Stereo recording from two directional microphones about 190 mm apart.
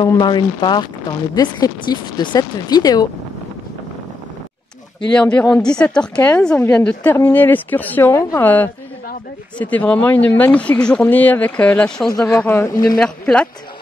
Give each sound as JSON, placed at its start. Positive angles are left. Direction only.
{"t": 0.0, "sound": "speech", "side_deg": 25}
{"t": 5.3, "sound": "a woman's voice", "side_deg": 15}
{"t": 12.9, "sound": "speech", "side_deg": 5}